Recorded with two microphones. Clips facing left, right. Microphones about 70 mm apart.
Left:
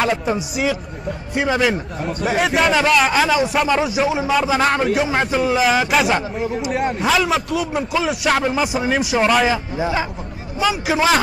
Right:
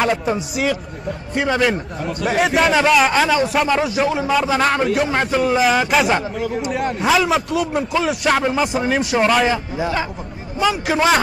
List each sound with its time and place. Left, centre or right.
0.0 s a man's voice: centre
9.8 s speech: centre
10.6 s a man's voice: centre